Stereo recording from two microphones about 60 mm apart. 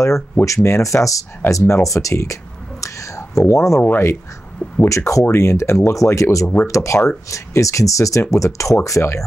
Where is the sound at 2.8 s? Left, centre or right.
Left.